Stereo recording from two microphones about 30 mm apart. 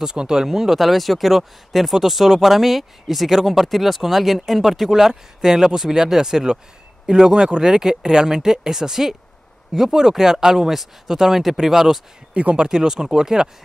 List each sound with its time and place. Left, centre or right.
0.0 s speech: right
0.5 s speech: centre